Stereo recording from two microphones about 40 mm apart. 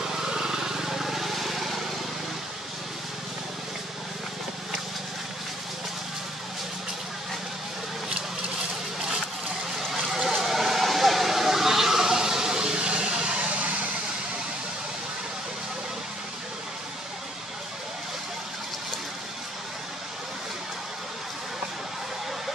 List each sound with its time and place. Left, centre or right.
0.0 s vehicle: centre
9.8 s a sound: centre; by 13.5 s right
13.5 s vehicle: right